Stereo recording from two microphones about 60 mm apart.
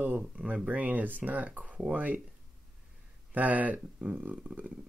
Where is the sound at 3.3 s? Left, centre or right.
Right.